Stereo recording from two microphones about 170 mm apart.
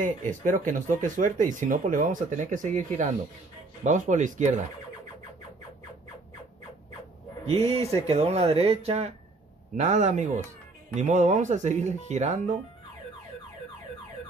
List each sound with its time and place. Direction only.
0.3 s speech: 50° right (ahead or behind)
7.4 s speech: 35° right (ahead or behind)